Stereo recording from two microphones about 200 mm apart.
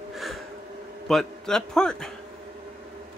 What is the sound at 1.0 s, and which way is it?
Speech, centre (ahead or behind).